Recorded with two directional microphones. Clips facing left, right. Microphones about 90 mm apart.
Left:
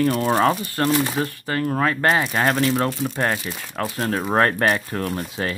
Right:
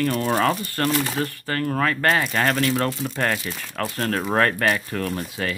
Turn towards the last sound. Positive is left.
turn(degrees=25)  # may be behind; listen again after turning